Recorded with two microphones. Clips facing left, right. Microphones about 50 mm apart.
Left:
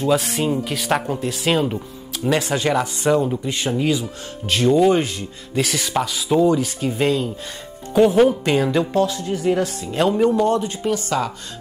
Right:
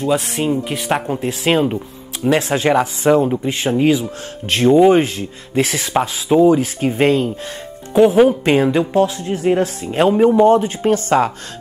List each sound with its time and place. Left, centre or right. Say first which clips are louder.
0.0 s speech: right 1 dB; centre
1.2 s speech: right 4 dB; right
4.6 s speech: right 5 dB; right
4.9 s speech: right 5 dB; right
7.9 s speech: right 3 dB; centre
8.3 s speech: right 4 dB; right